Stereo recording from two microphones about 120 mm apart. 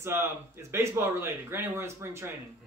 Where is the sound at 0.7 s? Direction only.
20° right (ahead or behind).